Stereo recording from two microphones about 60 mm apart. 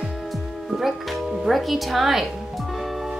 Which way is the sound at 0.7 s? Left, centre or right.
Centre.